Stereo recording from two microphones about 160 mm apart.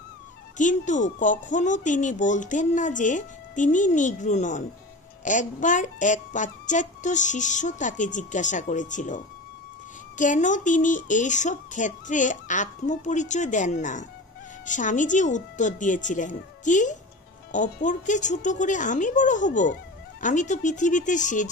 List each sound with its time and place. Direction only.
0.6 s speech: 50° left (ahead or behind)